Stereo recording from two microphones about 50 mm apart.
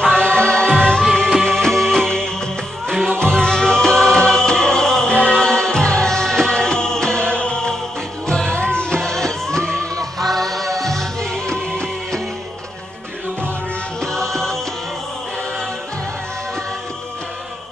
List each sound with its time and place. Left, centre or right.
0.0 s music: centre
14.1 s music: centre